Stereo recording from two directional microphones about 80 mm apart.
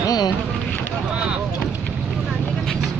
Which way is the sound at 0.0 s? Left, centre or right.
Left.